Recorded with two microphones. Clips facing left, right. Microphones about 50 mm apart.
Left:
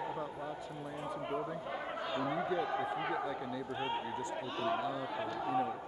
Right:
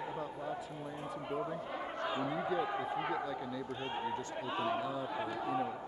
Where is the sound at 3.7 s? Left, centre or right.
Left.